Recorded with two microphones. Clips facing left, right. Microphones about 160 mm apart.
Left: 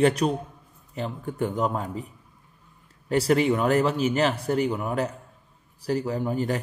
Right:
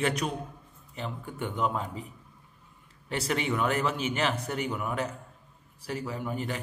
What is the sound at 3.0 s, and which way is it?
Speech, 40° left (ahead or behind).